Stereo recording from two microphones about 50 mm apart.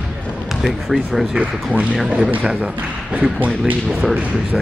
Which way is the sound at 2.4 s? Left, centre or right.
Right.